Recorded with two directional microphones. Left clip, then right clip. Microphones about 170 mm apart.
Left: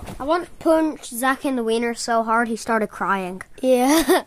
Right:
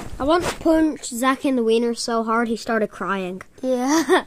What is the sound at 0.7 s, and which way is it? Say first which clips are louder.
Speech: left 2 dB; centre (ahead or behind).